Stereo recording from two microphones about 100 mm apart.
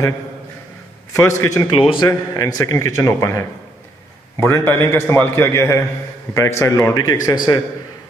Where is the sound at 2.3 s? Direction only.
40° left (ahead or behind).